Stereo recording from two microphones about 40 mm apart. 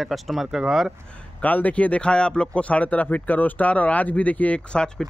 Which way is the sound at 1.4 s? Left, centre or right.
Left.